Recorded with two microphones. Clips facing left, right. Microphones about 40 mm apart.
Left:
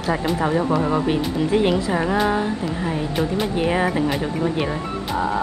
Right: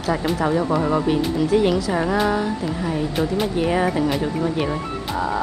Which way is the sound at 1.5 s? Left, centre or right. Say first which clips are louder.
Even; left.